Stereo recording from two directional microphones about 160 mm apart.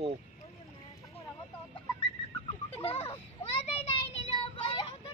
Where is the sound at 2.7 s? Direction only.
35° left (ahead or behind).